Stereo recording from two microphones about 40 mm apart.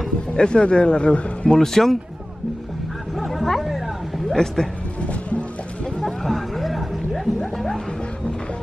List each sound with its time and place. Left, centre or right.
0.3 s a man's voice: left
1.5 s speech: centre
3.2 s a sound: centre
4.6 s speech: centre
5.0 s music: left
6.2 s hubbub: centre
7.3 s music: centre